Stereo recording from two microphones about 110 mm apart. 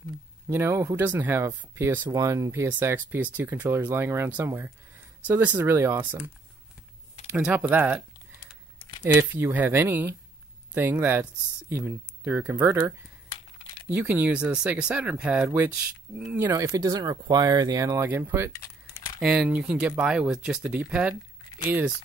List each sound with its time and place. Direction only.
0.5 s speech: 20° right (ahead or behind)
7.4 s speech: 10° right (ahead or behind)
9.0 s speech: 20° right (ahead or behind)
16.4 s speech: 30° right (ahead or behind)
18.0 s speech: 20° right (ahead or behind)